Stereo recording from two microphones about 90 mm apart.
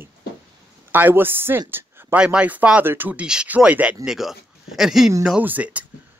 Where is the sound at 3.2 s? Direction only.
10° right (ahead or behind).